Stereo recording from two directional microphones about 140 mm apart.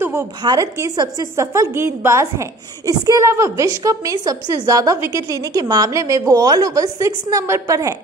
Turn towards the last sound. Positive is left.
turn(degrees=-20)  # may be behind; listen again after turning